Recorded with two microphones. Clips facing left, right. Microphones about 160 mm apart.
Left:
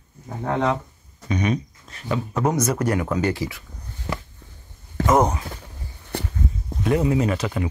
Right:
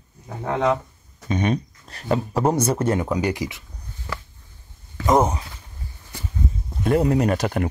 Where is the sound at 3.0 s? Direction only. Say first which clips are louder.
Even; 15° right (ahead or behind).